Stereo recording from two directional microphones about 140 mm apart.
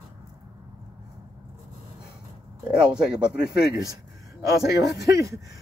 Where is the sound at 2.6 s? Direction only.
5° right (ahead or behind).